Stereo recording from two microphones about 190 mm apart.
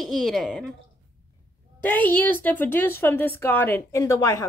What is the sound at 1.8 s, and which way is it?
A woman's voice, 10° left (ahead or behind).